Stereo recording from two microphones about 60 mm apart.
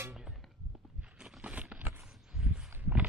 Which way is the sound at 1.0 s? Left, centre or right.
Centre.